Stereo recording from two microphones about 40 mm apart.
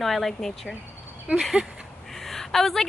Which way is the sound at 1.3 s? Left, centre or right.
Right.